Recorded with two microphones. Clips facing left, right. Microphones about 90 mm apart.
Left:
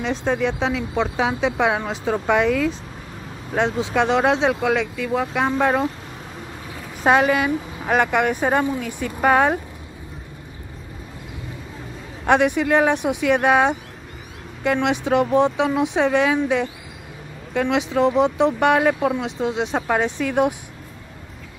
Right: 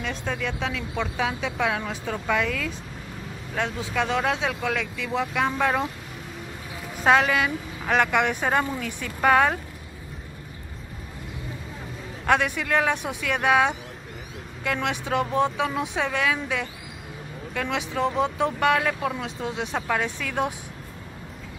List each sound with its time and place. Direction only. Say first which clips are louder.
0.0 s speech: left 8 dB; 30° left (ahead or behind)
3.9 s speech: left 6 dB; 30° left (ahead or behind)
4.6 s speech: left 7 dB; 10° left (ahead or behind)
7.0 s speech: left 3 dB; 5° left (ahead or behind)
12.3 s speech: left 6 dB; 15° left (ahead or behind)
14.6 s speech: left 7 dB; 10° left (ahead or behind)